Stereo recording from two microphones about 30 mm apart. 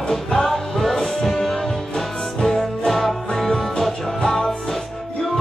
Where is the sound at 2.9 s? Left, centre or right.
Centre.